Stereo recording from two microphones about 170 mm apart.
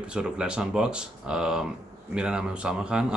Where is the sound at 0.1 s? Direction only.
5° right (ahead or behind).